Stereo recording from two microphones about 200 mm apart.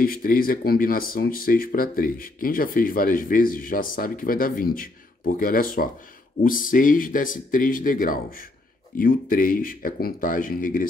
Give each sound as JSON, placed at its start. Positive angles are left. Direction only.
{"t": 0.0, "sound": "speech", "side_deg": 45}